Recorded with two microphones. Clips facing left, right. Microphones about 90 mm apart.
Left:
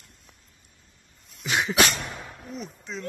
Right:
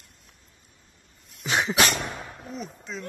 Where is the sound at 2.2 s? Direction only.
15° right (ahead or behind).